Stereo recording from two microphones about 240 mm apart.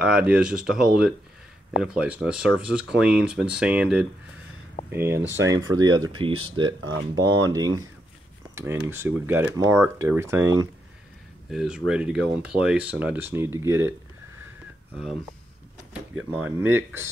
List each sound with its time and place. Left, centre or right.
0.0 s speech: centre
4.8 s a sound: left
5.3 s speech: centre
6.8 s speech: right
7.4 s speech: centre
15.9 s speech: centre